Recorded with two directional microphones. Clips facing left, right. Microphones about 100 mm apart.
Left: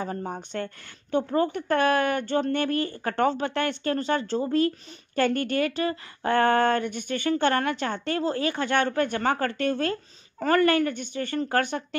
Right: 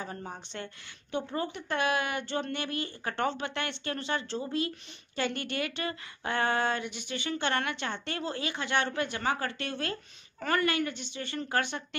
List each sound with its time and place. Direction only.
0.0 s a woman's voice: 40° left (ahead or behind)